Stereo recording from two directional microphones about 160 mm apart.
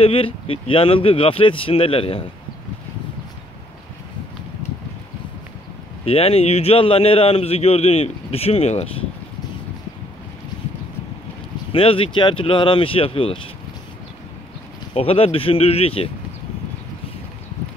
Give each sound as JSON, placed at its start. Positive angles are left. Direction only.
{"t": 0.0, "sound": "a man's voice", "side_deg": 35}
{"t": 6.0, "sound": "a man's voice", "side_deg": 40}
{"t": 11.7, "sound": "a man's voice", "side_deg": 35}
{"t": 15.0, "sound": "a man's voice", "side_deg": 35}